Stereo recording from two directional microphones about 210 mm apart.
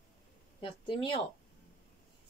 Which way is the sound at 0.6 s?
25° left (ahead or behind).